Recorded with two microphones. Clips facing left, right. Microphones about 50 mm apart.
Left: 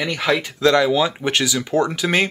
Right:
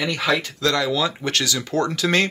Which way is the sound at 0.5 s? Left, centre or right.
Left.